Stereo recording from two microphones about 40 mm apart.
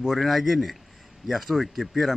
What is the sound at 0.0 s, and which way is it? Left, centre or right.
A man's voice, centre.